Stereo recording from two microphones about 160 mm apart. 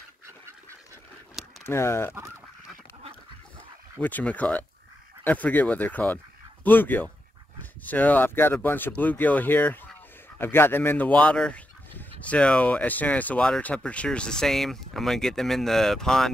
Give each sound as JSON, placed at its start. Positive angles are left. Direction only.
{"t": 1.6, "sound": "speech", "side_deg": 15}
{"t": 4.0, "sound": "speech", "side_deg": 10}